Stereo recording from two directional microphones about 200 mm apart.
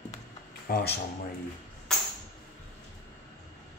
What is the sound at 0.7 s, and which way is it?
Speech, 50° left (ahead or behind).